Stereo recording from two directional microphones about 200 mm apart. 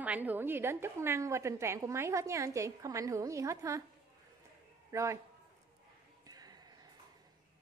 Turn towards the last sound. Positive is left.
turn(degrees=-20)  # may be behind; listen again after turning